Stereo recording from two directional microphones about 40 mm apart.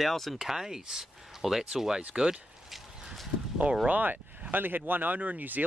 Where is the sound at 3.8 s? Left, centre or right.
Right.